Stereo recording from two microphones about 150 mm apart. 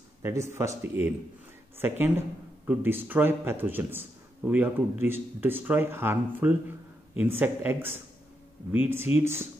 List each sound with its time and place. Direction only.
0.2 s speech: 20° right (ahead or behind)